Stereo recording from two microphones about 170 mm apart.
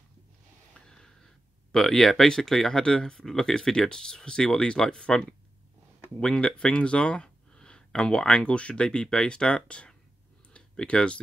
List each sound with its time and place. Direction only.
0.7 s a sound: 5° left (ahead or behind)
1.7 s speech: centre (ahead or behind)
10.5 s clicking: 5° left (ahead or behind)